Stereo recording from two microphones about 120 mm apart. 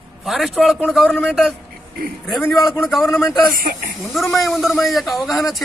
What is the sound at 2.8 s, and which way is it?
A man's voice, centre (ahead or behind).